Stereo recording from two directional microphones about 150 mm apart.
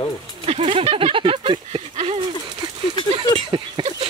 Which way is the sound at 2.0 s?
35° right (ahead or behind).